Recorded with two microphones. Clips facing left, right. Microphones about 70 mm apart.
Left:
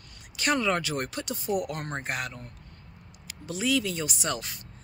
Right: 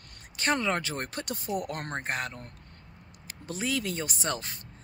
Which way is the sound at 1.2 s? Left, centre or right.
Right.